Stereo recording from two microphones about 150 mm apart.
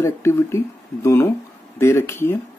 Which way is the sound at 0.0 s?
20° left (ahead or behind).